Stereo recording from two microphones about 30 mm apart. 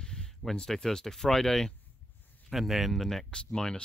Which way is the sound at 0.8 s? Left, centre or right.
Centre.